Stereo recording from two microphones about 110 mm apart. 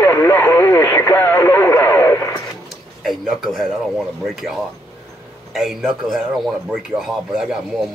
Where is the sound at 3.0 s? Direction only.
Centre (ahead or behind).